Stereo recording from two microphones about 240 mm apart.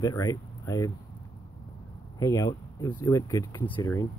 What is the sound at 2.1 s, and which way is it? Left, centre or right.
Speech, centre.